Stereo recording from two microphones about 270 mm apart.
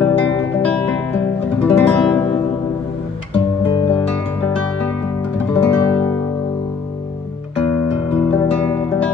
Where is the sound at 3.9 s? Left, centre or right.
Centre.